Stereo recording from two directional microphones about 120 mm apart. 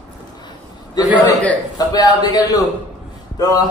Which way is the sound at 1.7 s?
35° left (ahead or behind).